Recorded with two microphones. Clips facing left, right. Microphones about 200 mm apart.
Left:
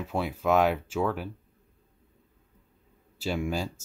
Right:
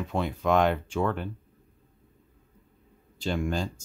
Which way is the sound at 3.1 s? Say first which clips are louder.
Right 1 dB; 5° left (ahead or behind).